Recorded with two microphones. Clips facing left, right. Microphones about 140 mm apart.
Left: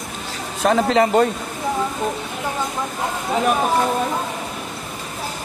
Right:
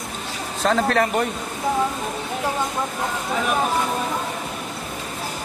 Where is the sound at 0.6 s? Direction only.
15° left (ahead or behind).